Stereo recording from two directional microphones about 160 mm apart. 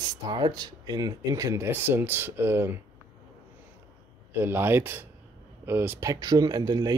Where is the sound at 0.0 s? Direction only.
25° right (ahead or behind).